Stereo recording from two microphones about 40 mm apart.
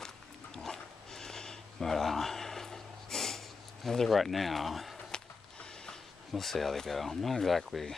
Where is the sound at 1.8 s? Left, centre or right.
Centre.